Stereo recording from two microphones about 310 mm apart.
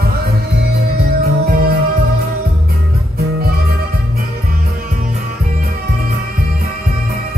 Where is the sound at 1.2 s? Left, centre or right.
Right.